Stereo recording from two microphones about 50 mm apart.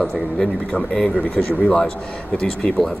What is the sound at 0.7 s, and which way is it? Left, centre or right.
Speech, left.